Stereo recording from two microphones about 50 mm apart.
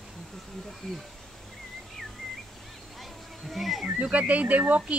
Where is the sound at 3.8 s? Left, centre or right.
Right.